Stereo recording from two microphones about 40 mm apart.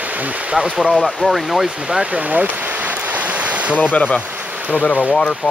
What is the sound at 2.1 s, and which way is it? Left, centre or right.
Speech, right.